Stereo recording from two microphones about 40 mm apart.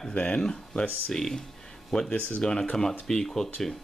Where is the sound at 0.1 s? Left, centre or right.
Left.